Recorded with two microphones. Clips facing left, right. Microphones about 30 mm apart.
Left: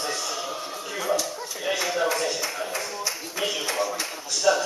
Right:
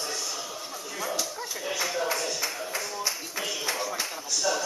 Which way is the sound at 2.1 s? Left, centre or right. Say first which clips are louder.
Left 4 dB; left.